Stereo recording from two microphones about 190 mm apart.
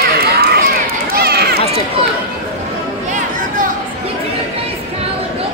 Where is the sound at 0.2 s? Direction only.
55° right (ahead or behind).